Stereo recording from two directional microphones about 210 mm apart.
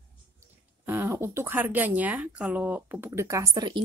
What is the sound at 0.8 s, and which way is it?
Speech, 10° right (ahead or behind).